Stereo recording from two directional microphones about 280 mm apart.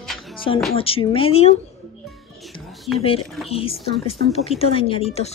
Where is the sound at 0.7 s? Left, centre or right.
Centre.